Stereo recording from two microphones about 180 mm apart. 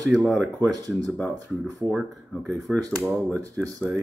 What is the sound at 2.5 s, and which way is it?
Speech, 5° left (ahead or behind).